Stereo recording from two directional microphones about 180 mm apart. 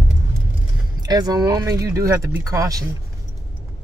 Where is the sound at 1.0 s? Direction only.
20° right (ahead or behind).